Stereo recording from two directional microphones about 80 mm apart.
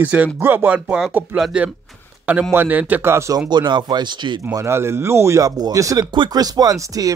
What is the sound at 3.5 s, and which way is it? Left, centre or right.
Speech, right.